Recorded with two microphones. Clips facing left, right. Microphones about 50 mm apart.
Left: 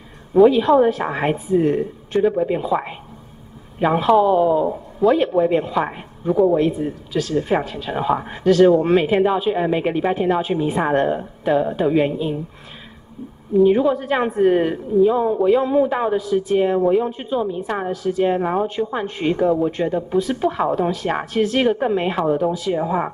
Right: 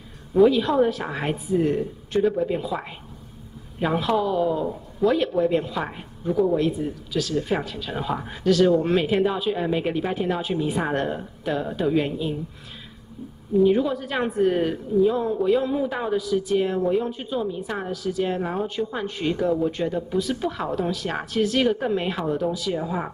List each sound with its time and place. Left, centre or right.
0.5 s speech: left
4.2 s speech: left
13.7 s speech: centre